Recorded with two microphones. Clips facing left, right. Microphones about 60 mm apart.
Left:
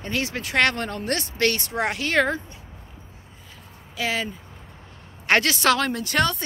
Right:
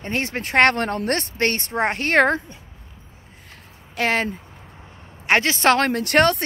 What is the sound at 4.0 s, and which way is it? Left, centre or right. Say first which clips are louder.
Speech: right 5 dB; right.